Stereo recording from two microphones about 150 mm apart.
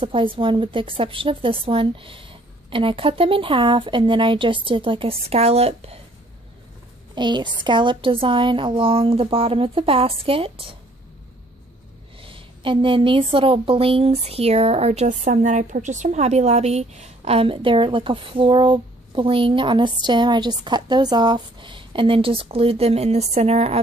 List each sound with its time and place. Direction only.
0.0 s a woman's voice: 35° right (ahead or behind)
7.2 s a woman's voice: 30° right (ahead or behind)
12.2 s a woman's voice: 35° right (ahead or behind)